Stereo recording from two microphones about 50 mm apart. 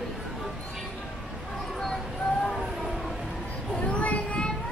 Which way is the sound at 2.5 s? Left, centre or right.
Centre.